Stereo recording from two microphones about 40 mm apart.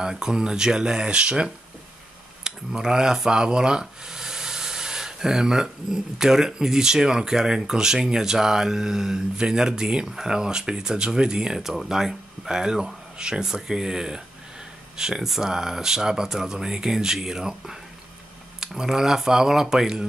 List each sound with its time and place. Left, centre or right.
0.0 s speech: centre
18.8 s speech: centre